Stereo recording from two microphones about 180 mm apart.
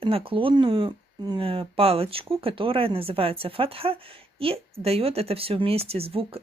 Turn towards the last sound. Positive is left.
turn(degrees=-35)  # may be behind; listen again after turning